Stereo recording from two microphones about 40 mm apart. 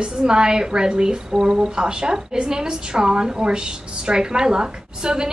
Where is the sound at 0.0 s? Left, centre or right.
Centre.